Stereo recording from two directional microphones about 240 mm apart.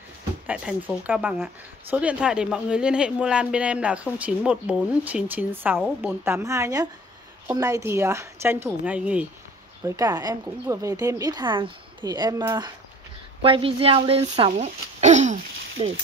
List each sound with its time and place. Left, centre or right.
0.5 s a woman's voice: centre; by 15.9 s right